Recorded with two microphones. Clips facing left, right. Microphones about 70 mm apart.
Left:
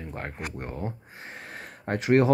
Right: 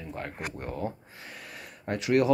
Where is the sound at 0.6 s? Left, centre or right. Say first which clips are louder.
Right 3 dB; left.